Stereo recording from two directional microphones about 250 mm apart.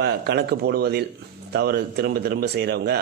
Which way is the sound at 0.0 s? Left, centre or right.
Right.